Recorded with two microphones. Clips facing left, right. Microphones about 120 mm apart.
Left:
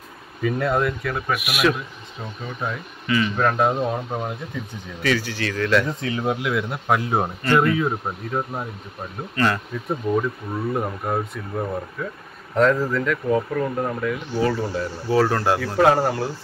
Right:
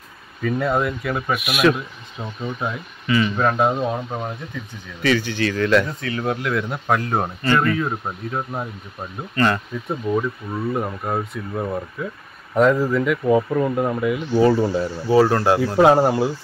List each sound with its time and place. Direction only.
0.4 s speech: 5° left (ahead or behind)
0.7 s speech: 5° right (ahead or behind)
1.4 s speech: 10° left (ahead or behind)
3.1 s speech: 5° right (ahead or behind)
5.9 s speech: 20° left (ahead or behind); by 14.9 s 20° right (ahead or behind)
15.0 s speech: 5° right (ahead or behind)
15.8 s speech: 20° right (ahead or behind)